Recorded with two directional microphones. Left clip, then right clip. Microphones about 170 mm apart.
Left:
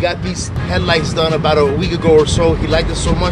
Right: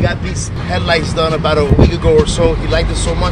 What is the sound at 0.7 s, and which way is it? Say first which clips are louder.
Speech: right 1 dB; 60° left (ahead or behind).